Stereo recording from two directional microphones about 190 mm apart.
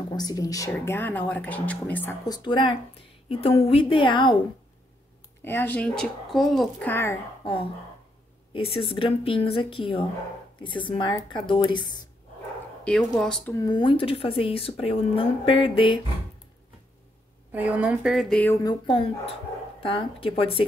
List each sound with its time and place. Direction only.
0.1 s speech: 20° left (ahead or behind)
2.2 s speech: 25° left (ahead or behind)
5.4 s speech: 10° left (ahead or behind)
8.5 s speech: 30° left (ahead or behind)
12.8 s a woman's voice: 5° left (ahead or behind)
13.6 s speech: 25° left (ahead or behind)
17.5 s a woman's voice: 10° right (ahead or behind)
18.5 s speech: 20° left (ahead or behind)